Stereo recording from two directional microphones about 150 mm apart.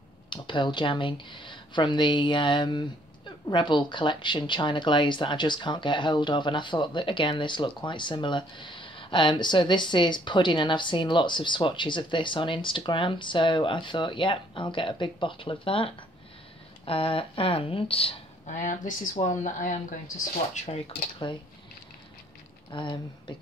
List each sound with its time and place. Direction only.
0.3 s speech: 30° left (ahead or behind)
18.5 s speech: 55° left (ahead or behind)
20.5 s speech: 45° left (ahead or behind)
22.7 s speech: 30° left (ahead or behind)